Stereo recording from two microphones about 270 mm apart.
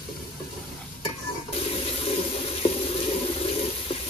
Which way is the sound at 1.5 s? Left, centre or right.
Left.